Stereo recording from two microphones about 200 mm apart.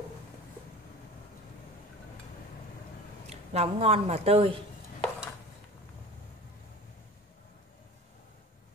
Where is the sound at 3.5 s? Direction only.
30° right (ahead or behind).